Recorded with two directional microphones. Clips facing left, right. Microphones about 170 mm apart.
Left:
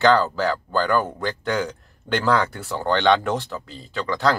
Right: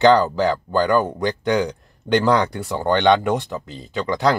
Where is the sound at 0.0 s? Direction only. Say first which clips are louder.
Right 4 dB; 20° right (ahead or behind).